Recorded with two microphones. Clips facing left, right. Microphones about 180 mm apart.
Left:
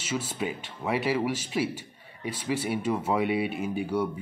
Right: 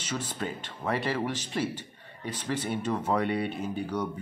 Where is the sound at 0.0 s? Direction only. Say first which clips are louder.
Left 3 dB; 10° left (ahead or behind).